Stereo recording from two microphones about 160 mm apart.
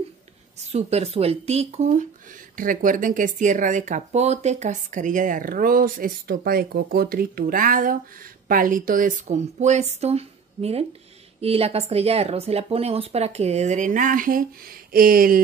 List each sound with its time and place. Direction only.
0.7 s speech: 40° right (ahead or behind)
2.5 s speech: 60° right (ahead or behind)